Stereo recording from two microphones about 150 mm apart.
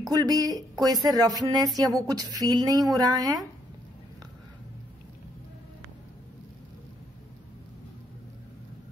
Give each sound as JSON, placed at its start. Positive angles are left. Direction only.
{"t": 0.1, "sound": "speech", "side_deg": -25}